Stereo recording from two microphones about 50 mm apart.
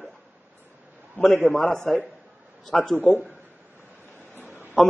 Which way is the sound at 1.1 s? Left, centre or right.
Left.